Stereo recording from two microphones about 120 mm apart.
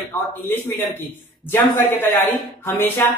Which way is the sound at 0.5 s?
20° left (ahead or behind).